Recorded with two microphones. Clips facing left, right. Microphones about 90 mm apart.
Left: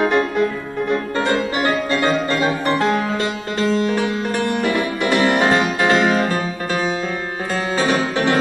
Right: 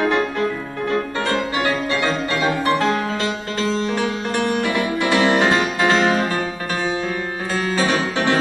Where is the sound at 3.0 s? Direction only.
5° left (ahead or behind).